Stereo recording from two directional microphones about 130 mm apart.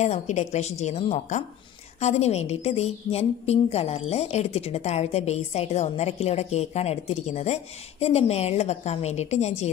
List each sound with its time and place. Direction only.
0.0 s a woman's voice: 65° left (ahead or behind)